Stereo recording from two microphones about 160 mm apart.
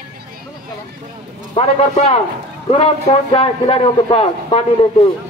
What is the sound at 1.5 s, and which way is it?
A man's voice, 35° left (ahead or behind).